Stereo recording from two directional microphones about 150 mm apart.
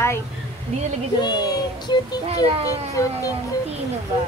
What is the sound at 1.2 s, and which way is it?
Speech, 30° left (ahead or behind).